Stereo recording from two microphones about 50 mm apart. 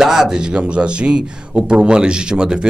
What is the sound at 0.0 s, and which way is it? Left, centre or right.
A man's voice, centre.